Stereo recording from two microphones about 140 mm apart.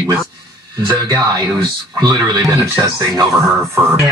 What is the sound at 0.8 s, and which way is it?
Speech, 30° right (ahead or behind).